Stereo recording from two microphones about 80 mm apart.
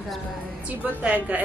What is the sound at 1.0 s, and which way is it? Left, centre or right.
Speech, centre.